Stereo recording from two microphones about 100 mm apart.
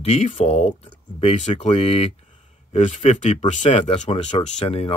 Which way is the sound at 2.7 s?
90° left.